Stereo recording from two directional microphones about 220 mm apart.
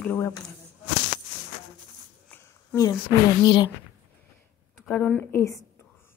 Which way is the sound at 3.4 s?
20° left (ahead or behind).